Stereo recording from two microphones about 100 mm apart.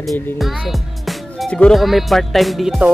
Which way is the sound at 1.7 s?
Centre (ahead or behind).